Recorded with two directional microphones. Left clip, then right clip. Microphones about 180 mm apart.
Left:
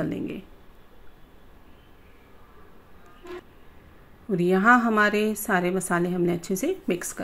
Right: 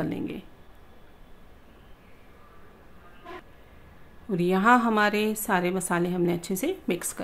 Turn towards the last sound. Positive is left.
turn(degrees=10)  # may be behind; listen again after turning